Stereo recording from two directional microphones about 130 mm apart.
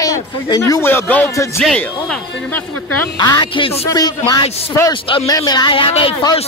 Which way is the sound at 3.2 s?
35° left (ahead or behind).